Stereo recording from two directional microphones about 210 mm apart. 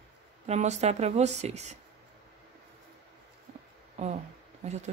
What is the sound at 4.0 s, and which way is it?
Speech, 30° right (ahead or behind).